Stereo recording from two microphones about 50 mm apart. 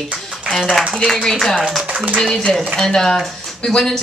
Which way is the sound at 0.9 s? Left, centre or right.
Centre.